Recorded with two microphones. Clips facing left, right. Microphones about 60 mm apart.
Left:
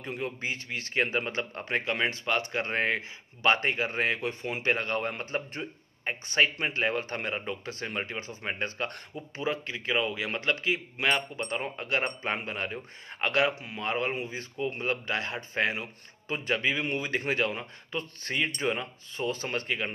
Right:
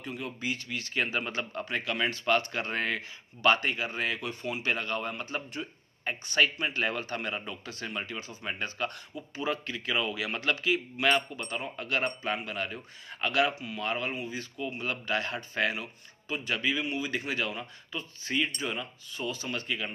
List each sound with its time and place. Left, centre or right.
0.0 s speech: left
9.4 s speech: left